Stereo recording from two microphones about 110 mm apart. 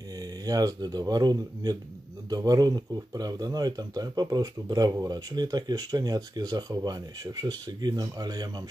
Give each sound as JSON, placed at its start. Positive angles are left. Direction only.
{"t": 0.2, "sound": "speech", "side_deg": -35}